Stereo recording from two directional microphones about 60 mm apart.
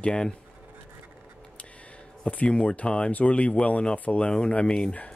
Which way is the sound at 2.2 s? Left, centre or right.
Left.